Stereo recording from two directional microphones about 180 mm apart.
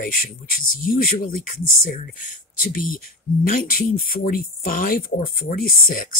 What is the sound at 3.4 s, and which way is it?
Speech, 50° left (ahead or behind).